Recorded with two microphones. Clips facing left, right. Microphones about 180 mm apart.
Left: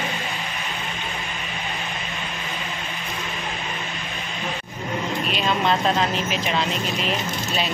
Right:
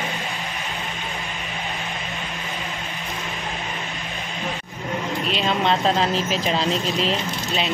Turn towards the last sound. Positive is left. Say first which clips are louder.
# even
turn(degrees=-25)  # may be behind; listen again after turning